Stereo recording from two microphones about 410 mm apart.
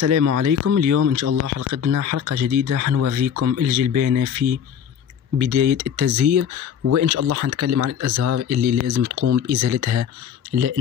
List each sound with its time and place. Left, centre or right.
0.0 s speech: right